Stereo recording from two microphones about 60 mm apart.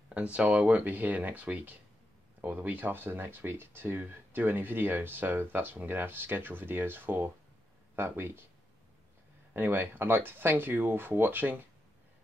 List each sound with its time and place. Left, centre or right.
0.1 s speech: centre; by 8.5 s right
9.5 s speech: right